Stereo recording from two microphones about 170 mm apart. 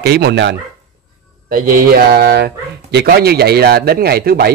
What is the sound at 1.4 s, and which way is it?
Speech, 60° right (ahead or behind).